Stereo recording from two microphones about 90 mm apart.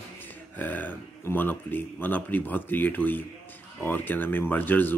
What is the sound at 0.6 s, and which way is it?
Speech, 20° left (ahead or behind).